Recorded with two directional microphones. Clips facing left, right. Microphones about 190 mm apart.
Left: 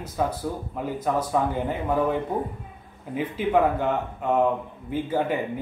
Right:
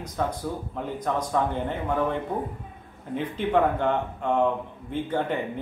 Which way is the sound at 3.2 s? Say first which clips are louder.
Left 1 dB; 5° left (ahead or behind).